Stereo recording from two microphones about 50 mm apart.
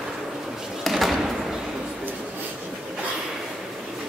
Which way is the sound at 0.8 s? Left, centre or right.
Centre.